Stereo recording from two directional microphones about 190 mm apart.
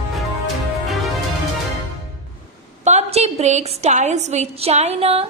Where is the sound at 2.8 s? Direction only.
35° right (ahead or behind).